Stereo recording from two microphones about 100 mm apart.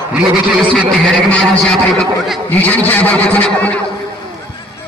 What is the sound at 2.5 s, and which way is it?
A man's voice, 15° left (ahead or behind).